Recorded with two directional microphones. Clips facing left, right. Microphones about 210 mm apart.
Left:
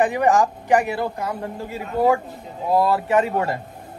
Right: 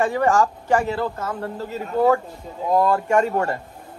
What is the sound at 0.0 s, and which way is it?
Speech, 15° left (ahead or behind).